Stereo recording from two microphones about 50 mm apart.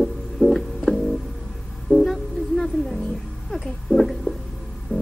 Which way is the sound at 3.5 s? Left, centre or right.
Centre.